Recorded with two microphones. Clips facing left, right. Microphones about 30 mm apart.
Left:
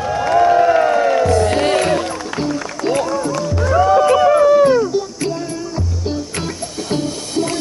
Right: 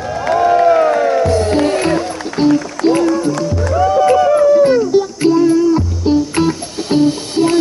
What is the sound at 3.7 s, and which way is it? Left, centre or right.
Music, left.